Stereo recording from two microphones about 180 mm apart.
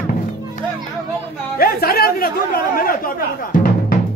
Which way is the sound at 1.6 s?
55° left (ahead or behind).